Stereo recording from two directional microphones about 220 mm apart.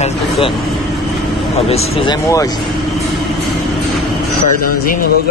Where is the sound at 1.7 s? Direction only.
25° left (ahead or behind).